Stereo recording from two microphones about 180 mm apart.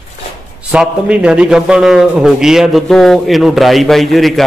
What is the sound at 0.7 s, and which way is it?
A man's voice, 5° right (ahead or behind).